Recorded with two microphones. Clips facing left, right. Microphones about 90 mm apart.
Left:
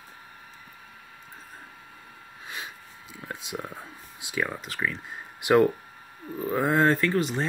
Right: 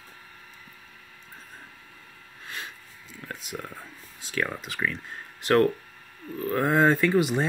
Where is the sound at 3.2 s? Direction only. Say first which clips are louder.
Left 1 dB; 15° left (ahead or behind).